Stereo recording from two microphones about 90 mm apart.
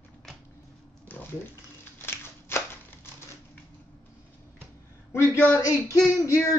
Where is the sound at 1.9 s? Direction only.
25° left (ahead or behind).